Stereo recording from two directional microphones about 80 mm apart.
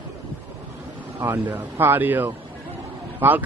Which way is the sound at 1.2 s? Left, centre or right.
Right.